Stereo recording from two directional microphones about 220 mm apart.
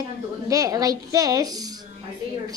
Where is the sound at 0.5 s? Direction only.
15° right (ahead or behind).